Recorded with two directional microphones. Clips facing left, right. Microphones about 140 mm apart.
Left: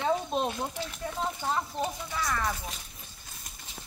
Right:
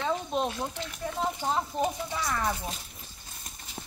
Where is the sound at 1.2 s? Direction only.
15° right (ahead or behind).